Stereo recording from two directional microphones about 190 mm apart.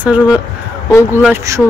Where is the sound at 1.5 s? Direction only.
15° right (ahead or behind).